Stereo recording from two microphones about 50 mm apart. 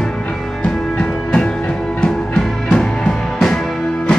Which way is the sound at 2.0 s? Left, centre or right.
Centre.